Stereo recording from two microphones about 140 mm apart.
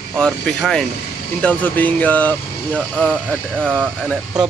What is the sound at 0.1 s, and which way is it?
Speech, centre (ahead or behind).